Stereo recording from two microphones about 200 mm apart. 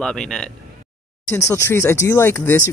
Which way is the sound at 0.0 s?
5° left (ahead or behind).